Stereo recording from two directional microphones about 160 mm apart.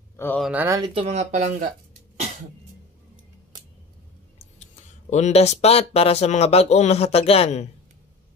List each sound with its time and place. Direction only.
0.4 s speech: 10° right (ahead or behind)
0.7 s speech: 25° right (ahead or behind)
0.9 s speech: 40° right (ahead or behind)
5.1 s speech: 45° left (ahead or behind)